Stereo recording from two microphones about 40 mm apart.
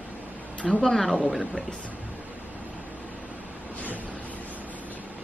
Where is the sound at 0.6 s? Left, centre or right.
Left.